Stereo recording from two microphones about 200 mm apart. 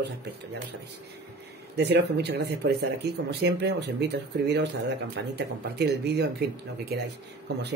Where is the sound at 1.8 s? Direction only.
55° right (ahead or behind).